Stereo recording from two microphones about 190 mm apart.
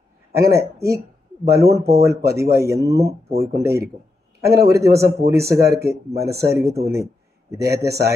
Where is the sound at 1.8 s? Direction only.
55° right (ahead or behind).